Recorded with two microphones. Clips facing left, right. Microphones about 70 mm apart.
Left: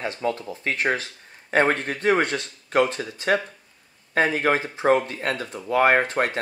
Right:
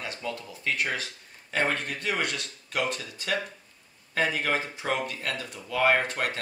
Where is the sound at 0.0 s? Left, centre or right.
Left.